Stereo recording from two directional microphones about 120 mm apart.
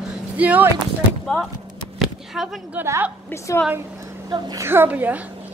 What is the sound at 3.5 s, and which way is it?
Speech, 25° left (ahead or behind).